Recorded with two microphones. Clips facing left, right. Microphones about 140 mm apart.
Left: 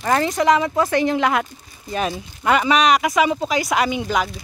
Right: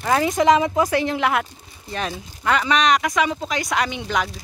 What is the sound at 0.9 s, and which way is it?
Speech, centre (ahead or behind).